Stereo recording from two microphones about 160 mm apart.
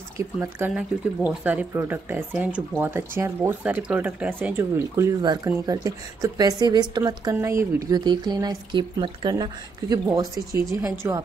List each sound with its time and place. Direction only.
0.4 s speech: 10° right (ahead or behind)